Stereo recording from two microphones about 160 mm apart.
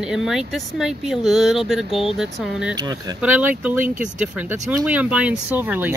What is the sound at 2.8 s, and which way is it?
Speech, 25° right (ahead or behind).